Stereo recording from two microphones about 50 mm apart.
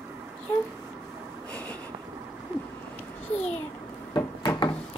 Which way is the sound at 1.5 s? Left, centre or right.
Left.